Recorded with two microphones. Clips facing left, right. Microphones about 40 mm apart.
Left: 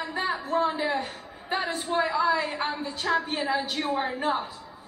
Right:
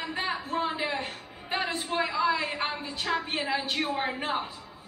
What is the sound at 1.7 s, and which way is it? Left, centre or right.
A woman's voice, right.